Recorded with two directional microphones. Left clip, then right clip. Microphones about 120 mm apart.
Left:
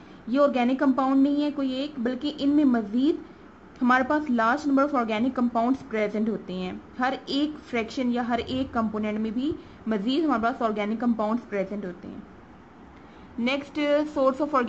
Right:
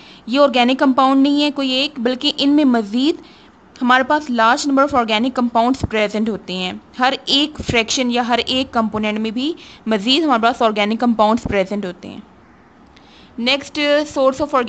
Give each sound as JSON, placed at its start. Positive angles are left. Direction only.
{"t": 0.3, "sound": "a woman's voice", "side_deg": -35}
{"t": 13.4, "sound": "a woman's voice", "side_deg": -25}